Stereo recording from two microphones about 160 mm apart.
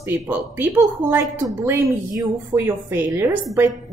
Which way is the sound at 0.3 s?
10° right (ahead or behind).